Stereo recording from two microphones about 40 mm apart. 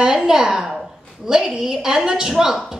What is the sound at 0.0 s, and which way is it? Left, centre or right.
A child's voice, centre.